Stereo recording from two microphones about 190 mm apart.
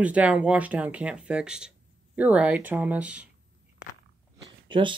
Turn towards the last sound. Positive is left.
turn(degrees=-25)  # may be behind; listen again after turning